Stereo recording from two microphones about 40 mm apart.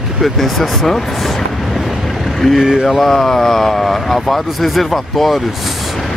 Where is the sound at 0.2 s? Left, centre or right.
Centre.